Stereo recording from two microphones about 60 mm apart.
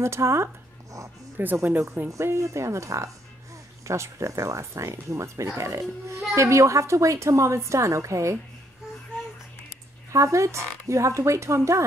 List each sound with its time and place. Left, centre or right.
0.0 s speech: right
1.4 s speech: right
2.0 s speech: right
10.1 s speech: right